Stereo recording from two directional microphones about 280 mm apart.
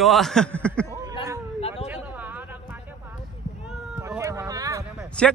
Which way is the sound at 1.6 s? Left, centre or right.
Left.